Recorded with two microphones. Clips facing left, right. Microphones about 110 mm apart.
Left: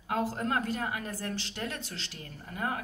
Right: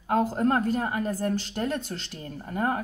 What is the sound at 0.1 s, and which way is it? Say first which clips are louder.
A woman's voice: right 7 dB; 45° right (ahead or behind).